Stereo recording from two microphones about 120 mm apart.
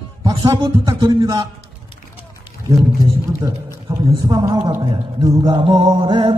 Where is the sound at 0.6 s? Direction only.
40° right (ahead or behind).